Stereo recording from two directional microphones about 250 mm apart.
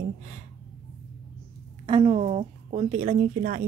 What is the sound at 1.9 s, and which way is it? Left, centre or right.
Speech, right.